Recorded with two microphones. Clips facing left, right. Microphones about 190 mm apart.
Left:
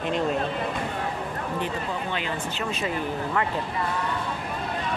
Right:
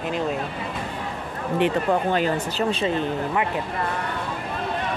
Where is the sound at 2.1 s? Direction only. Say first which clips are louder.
Right 7 dB; 40° right (ahead or behind); by 3.5 s 20° right (ahead or behind).